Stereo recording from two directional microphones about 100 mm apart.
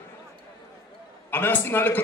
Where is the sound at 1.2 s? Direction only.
20° left (ahead or behind).